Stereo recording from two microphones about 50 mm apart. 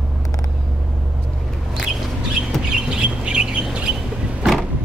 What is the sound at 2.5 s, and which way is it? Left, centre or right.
Bird, centre.